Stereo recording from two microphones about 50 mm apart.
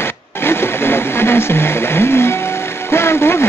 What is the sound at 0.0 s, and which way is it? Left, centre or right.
Blender, left.